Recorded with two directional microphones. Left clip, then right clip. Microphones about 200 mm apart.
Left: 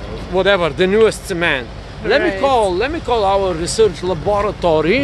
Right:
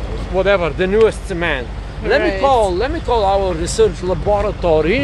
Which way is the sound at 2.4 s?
35° left (ahead or behind).